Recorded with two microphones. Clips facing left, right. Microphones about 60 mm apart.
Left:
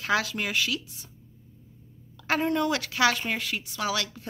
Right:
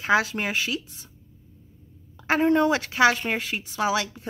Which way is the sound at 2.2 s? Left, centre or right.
Right.